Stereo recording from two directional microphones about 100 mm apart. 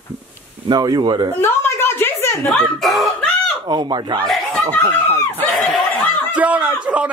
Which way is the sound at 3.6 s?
50° right (ahead or behind).